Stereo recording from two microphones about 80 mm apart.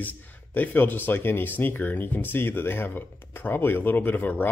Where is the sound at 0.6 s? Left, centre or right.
Left.